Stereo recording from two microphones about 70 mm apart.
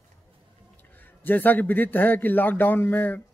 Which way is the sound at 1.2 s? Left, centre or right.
Left.